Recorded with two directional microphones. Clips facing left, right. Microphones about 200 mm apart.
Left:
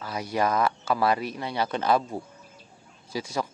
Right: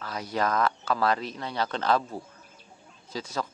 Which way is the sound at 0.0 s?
10° left (ahead or behind).